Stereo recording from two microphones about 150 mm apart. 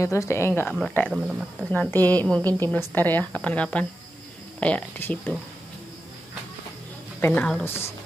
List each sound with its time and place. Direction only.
0.0 s a woman's voice: 20° left (ahead or behind)
1.1 s speech: 5° right (ahead or behind)
1.7 s a woman's voice: 10° left (ahead or behind)
7.2 s a woman's voice: 10° left (ahead or behind)